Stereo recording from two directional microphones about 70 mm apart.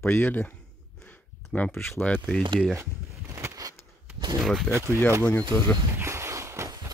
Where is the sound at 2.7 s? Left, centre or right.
Right.